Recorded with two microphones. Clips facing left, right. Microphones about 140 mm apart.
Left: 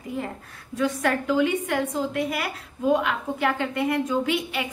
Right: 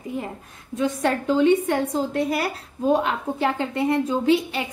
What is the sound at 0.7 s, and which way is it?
A woman's voice, 25° right (ahead or behind).